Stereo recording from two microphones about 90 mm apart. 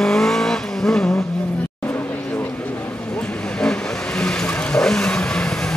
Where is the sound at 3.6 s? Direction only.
10° left (ahead or behind).